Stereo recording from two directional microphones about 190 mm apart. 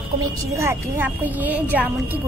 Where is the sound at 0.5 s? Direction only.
15° right (ahead or behind).